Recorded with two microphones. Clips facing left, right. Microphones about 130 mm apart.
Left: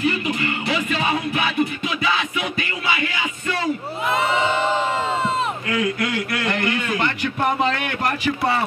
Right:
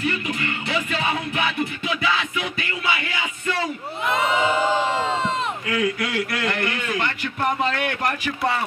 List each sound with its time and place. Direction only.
0.0 s music: 20° left (ahead or behind)
4.1 s crowd: centre (ahead or behind)
6.1 s a man's voice: 20° left (ahead or behind)